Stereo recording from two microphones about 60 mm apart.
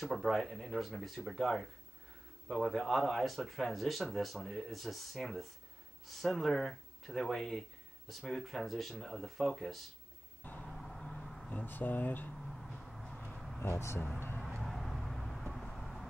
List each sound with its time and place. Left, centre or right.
0.0 s speech: centre
10.7 s vehicle: centre
11.5 s speech: left
12.4 s a sound: centre
13.6 s speech: left
14.6 s vehicle: centre